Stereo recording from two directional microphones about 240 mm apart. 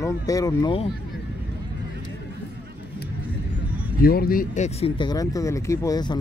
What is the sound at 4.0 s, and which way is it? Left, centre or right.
Speech, left.